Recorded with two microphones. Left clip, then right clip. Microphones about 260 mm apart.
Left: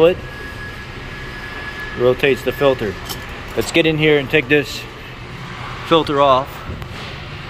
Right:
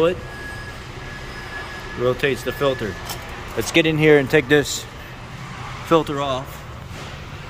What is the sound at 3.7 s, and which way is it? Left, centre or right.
Speech, centre.